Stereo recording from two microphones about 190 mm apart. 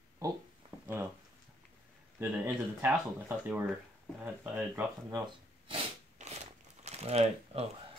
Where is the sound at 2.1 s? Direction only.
10° right (ahead or behind).